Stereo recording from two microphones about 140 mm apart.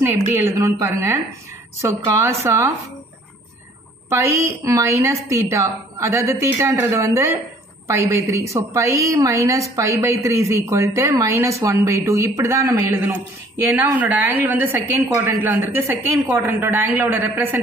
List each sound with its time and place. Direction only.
0.0 s a woman's voice: 20° right (ahead or behind)
4.1 s a woman's voice: 20° right (ahead or behind)